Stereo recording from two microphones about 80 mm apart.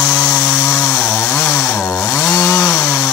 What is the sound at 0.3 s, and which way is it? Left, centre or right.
Chainsaw, left.